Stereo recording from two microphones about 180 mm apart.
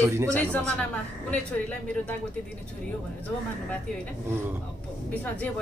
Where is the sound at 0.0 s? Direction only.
15° right (ahead or behind).